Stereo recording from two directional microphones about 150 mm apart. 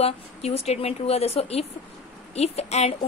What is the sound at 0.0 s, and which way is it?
A woman's voice, 40° left (ahead or behind).